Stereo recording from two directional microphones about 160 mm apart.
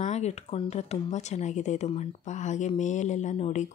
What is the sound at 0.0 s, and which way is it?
Speech, 45° left (ahead or behind).